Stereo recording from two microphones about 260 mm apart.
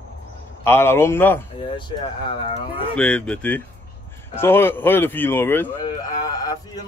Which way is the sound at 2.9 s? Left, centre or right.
Centre.